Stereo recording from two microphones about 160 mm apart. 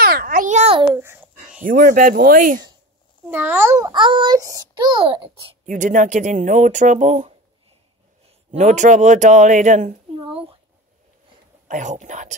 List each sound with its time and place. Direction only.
0.0 s a sound: 70° right (ahead or behind); by 0.7 s 45° right (ahead or behind)
0.9 s babbling: 15° right (ahead or behind)
1.6 s speech: 60° right (ahead or behind)
3.3 s a child's voice: 15° right (ahead or behind)
3.9 s a child's voice: 30° right (ahead or behind)
5.7 s speech: 50° right (ahead or behind)
8.5 s speech: 50° right (ahead or behind)
10.1 s a sound: 35° right (ahead or behind)
11.6 s speech: 50° right (ahead or behind)